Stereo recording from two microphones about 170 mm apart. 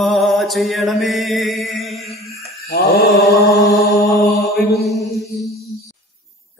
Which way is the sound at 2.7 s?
70° left (ahead or behind).